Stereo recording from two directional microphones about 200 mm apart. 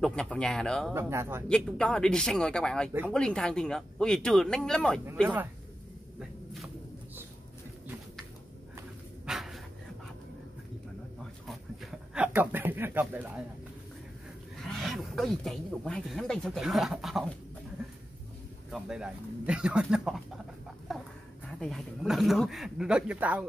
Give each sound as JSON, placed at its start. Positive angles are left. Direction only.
{"t": 0.0, "sound": "speech", "side_deg": 5}
{"t": 0.9, "sound": "speech", "side_deg": -15}
{"t": 1.5, "sound": "speech", "side_deg": 5}
{"t": 8.7, "sound": "dog", "side_deg": -5}
{"t": 11.4, "sound": "a sound", "side_deg": 0}
{"t": 14.6, "sound": "speech", "side_deg": 0}
{"t": 18.7, "sound": "speech", "side_deg": -5}
{"t": 20.9, "sound": "a sound", "side_deg": 0}
{"t": 21.5, "sound": "speech", "side_deg": 0}